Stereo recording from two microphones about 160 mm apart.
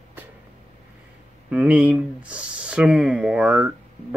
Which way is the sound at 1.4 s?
10° right (ahead or behind).